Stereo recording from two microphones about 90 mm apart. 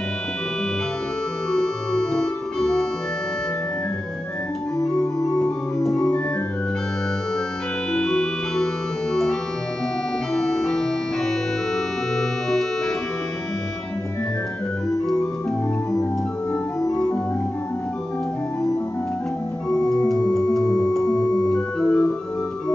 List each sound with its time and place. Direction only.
1.5 s organ: 5° left (ahead or behind)
5.0 s organ: 40° left (ahead or behind)
7.9 s music: 5° left (ahead or behind)
9.1 s organ: 5° left (ahead or behind)
16.8 s organ: 45° left (ahead or behind)
19.7 s organ: 45° left (ahead or behind)
20.6 s music: 45° left (ahead or behind)
21.0 s organ: 45° left (ahead or behind)
21.7 s organ: 10° left (ahead or behind)